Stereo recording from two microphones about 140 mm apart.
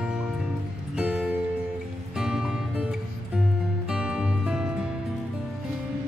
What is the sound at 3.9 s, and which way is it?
Music, 5° right (ahead or behind).